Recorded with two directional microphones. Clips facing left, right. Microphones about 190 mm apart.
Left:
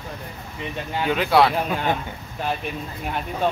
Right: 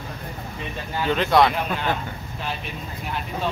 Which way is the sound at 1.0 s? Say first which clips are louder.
Even; 5° left (ahead or behind).